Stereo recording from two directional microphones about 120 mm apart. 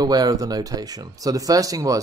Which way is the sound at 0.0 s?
35° right (ahead or behind).